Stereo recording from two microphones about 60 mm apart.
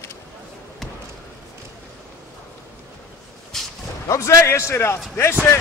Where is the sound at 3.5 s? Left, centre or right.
Centre.